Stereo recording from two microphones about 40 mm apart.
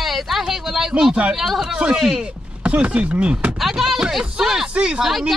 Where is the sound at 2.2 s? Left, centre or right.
Right.